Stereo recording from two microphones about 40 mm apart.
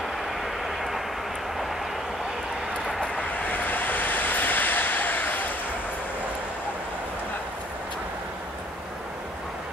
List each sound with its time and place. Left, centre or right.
0.7 s vehicle: centre
3.4 s vehicle: left